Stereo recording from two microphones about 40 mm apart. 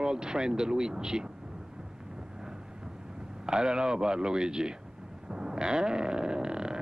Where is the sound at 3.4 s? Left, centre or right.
Centre.